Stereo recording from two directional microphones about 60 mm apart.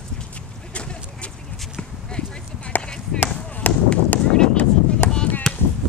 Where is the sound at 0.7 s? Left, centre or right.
Centre.